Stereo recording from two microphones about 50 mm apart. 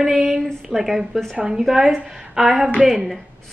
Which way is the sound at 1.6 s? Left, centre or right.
Centre.